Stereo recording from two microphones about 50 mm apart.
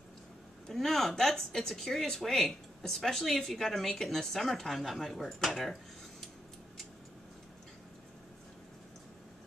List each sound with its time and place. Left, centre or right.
0.7 s speech: centre